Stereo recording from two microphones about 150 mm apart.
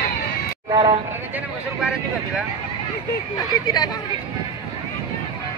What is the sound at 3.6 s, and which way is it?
Speech, 25° left (ahead or behind).